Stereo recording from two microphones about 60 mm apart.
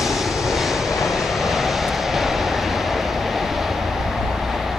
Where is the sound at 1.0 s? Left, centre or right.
Centre.